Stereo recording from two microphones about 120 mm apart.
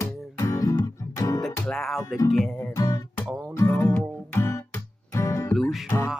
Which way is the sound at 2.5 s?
30° left (ahead or behind).